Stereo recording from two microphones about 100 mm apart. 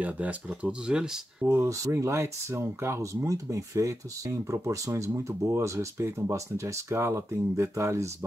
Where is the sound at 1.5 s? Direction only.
30° right (ahead or behind).